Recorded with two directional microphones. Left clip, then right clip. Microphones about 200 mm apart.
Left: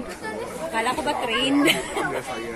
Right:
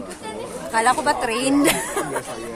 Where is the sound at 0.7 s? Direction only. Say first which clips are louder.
Right 6 dB; 30° right (ahead or behind).